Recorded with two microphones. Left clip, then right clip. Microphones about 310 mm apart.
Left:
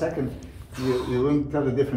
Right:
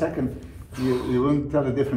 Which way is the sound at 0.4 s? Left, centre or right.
Centre.